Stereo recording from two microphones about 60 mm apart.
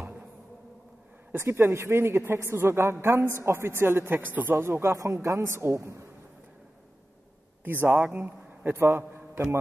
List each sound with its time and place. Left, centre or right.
1.3 s a woman's voice: right
4.6 s a woman's voice: right
4.8 s a woman's voice: right
7.6 s a man's voice: right